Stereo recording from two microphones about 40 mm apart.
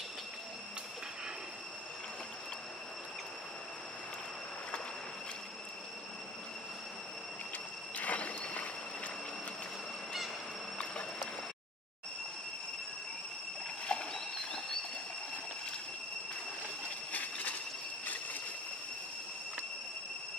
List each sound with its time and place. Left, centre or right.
8.0 s mechanisms: left
13.8 s vehicle: left
14.3 s rodents: centre
17.1 s train: left
18.0 s a sound: left